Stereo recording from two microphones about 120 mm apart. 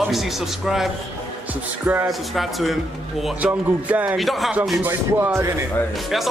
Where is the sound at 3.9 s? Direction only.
15° right (ahead or behind).